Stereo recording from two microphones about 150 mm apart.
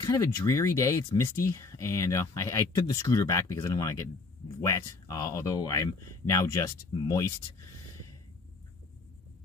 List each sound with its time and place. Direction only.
0.0 s speech: 20° left (ahead or behind)